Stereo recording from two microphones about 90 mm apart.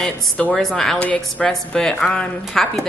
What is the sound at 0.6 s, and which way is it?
Speech, 5° left (ahead or behind).